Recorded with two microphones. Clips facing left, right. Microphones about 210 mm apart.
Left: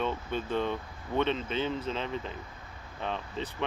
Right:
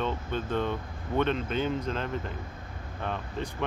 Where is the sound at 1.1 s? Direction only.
5° right (ahead or behind).